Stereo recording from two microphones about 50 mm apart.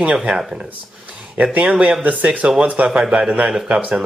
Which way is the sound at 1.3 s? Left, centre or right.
Right.